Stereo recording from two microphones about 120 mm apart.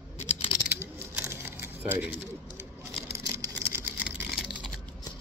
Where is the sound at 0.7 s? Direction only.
20° right (ahead or behind).